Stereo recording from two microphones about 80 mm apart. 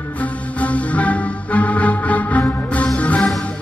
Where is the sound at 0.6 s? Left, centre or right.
Centre.